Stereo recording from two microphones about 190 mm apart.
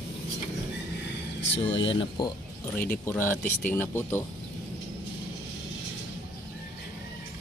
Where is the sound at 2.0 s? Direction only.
25° left (ahead or behind).